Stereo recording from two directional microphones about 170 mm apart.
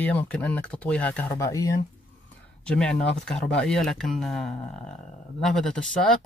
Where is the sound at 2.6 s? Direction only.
5° left (ahead or behind).